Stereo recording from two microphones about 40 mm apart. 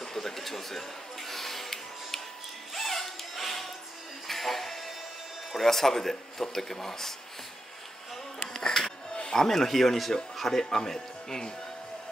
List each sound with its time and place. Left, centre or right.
0.0 s a sound: centre
2.7 s music: centre
5.6 s speech: centre
8.5 s music: centre
9.1 s music: centre
9.4 s speech: centre